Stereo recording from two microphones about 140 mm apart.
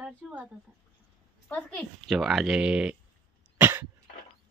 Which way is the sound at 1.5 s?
10° left (ahead or behind).